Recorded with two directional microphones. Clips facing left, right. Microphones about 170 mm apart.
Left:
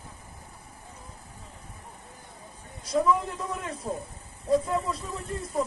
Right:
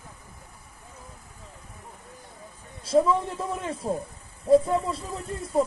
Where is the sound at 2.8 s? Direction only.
30° right (ahead or behind).